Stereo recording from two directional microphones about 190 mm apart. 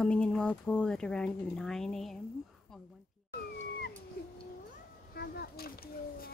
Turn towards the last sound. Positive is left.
turn(degrees=50)  # may be behind; listen again after turning